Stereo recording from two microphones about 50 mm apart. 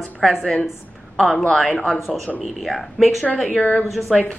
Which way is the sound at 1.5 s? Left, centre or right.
Centre.